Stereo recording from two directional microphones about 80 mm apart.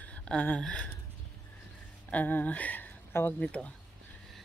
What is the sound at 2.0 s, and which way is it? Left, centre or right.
Speech, centre.